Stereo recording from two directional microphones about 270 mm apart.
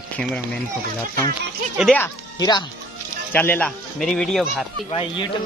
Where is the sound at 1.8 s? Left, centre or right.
Centre.